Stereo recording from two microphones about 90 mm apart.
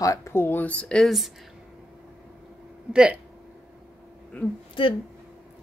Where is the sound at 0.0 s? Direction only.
35° left (ahead or behind); by 1.3 s centre (ahead or behind).